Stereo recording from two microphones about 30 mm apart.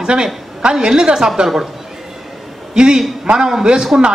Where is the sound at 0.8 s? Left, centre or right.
Right.